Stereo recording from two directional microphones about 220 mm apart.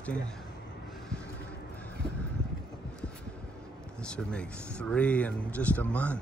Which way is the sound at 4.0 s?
5° left (ahead or behind).